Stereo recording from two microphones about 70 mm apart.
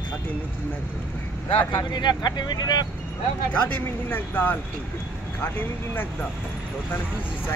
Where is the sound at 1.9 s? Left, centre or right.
Left.